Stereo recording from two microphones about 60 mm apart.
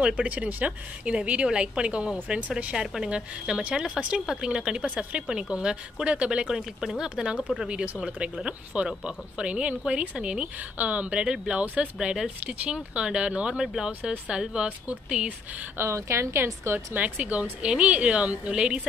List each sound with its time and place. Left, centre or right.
0.0 s speech: centre
15.8 s speech: right
16.9 s speech: right